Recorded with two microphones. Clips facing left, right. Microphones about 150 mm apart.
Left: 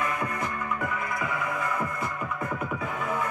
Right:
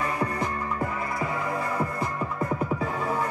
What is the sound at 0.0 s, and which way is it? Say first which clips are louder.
Music: right 2 dB; 30° right (ahead or behind).